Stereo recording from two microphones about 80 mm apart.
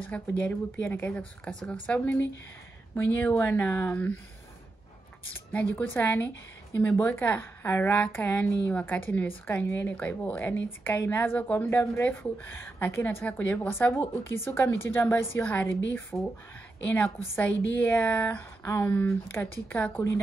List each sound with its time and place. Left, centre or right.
0.0 s a woman's voice: left
2.9 s a woman's voice: left
5.5 s a woman's voice: centre
18.6 s a woman's voice: left